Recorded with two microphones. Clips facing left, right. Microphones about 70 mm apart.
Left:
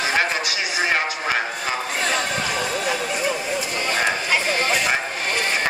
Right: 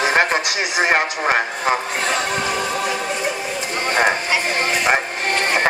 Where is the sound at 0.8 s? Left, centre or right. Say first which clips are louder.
Right 5 dB; right.